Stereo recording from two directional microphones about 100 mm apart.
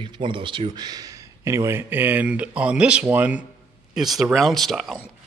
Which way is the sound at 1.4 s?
30° right (ahead or behind).